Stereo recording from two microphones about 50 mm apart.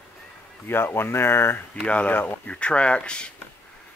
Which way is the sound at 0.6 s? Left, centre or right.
Left.